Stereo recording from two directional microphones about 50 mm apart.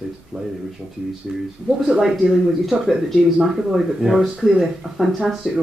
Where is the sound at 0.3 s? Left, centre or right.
Centre.